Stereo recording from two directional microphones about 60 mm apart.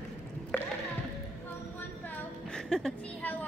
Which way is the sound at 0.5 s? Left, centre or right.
Left.